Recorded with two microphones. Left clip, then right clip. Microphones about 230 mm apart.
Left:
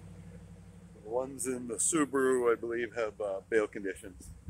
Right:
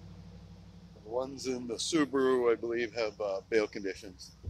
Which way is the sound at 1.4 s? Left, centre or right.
Centre.